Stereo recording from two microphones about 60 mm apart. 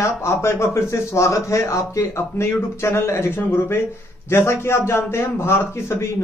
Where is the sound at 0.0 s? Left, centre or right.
Left.